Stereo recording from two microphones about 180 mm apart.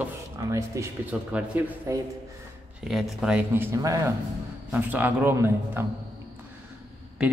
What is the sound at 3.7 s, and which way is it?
A man's voice, 20° right (ahead or behind).